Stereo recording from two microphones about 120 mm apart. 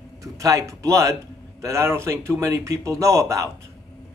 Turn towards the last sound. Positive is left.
turn(degrees=-25)  # may be behind; listen again after turning